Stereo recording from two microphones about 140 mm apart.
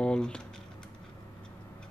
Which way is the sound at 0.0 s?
5° left (ahead or behind).